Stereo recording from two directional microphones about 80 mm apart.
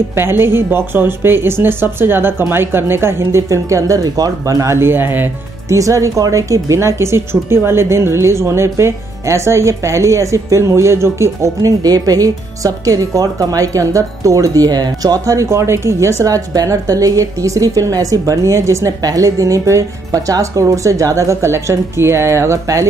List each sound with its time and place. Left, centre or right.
0.1 s speech: right
5.7 s speech: right
15.2 s speech: right
16.2 s a woman's voice: right
18.9 s speech: right